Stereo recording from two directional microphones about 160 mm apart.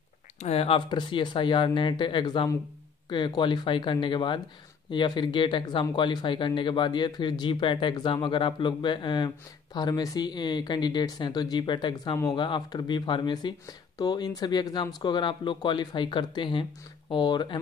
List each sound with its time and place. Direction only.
0.4 s speech: 40° left (ahead or behind)